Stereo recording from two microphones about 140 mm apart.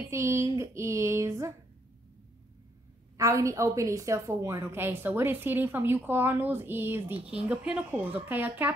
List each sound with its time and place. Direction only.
0.1 s speech: 20° right (ahead or behind)
3.2 s a woman's voice: 25° right (ahead or behind)